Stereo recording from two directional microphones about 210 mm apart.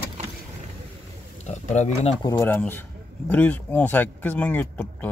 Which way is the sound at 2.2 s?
15° left (ahead or behind).